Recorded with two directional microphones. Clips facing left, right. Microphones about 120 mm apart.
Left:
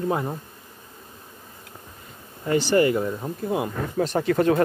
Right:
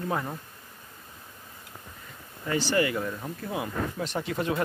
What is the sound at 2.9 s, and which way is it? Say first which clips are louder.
Speech: left 6 dB; 20° left (ahead or behind).